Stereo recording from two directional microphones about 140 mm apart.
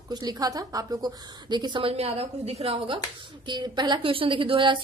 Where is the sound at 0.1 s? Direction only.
30° right (ahead or behind); by 3.0 s 45° right (ahead or behind).